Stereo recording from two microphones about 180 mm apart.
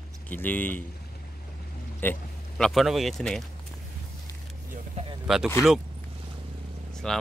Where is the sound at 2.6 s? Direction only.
Centre (ahead or behind).